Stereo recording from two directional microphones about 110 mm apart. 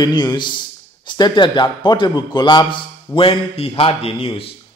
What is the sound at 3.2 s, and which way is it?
A man's voice, 55° left (ahead or behind).